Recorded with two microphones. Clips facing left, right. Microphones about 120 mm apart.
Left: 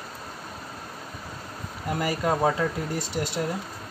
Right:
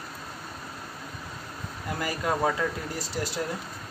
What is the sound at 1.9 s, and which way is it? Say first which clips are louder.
Speech: left 4 dB; 25° left (ahead or behind).